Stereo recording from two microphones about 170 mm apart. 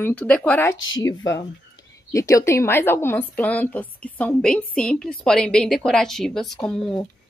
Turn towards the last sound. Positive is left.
turn(degrees=5)  # may be behind; listen again after turning